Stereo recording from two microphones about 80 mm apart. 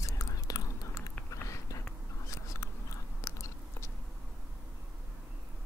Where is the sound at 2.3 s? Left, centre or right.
Left.